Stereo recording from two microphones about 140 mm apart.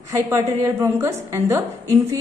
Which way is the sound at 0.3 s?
20° right (ahead or behind).